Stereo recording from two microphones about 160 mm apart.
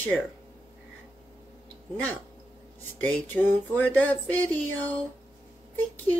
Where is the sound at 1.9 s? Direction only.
10° left (ahead or behind).